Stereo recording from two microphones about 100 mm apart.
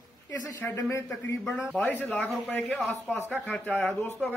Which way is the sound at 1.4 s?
Centre (ahead or behind).